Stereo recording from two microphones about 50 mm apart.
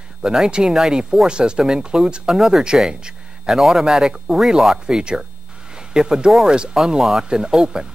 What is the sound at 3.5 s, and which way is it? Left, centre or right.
Speech, centre.